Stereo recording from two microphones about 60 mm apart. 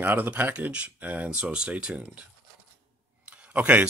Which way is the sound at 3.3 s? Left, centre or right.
Right.